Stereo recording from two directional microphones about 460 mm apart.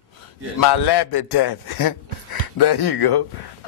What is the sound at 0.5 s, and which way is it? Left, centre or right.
Speech, left.